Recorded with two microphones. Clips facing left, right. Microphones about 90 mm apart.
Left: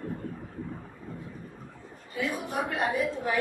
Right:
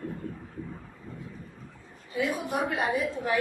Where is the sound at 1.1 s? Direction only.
50° left (ahead or behind).